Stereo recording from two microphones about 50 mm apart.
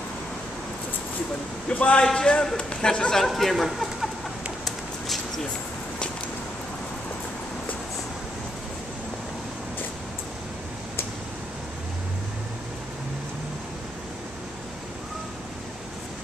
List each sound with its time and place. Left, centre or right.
1.7 s a man's voice: left
3.3 s speech: centre
4.6 s a sound: centre